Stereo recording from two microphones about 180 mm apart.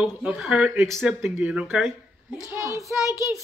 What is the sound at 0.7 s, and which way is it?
Speech, 15° right (ahead or behind).